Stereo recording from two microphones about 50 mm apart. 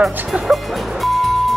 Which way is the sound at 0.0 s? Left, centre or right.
Centre.